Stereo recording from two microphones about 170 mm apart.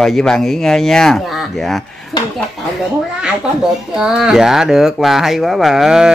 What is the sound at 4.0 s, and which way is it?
Speech, 5° right (ahead or behind).